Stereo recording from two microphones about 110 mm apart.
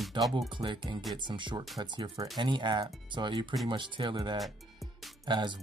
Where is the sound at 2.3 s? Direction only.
45° right (ahead or behind).